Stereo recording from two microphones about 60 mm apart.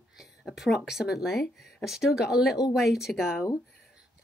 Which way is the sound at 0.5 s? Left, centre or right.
Centre.